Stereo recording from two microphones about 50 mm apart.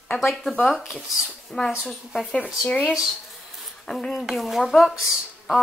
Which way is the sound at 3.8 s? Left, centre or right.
Centre.